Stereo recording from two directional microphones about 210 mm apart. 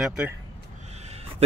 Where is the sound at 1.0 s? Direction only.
30° right (ahead or behind).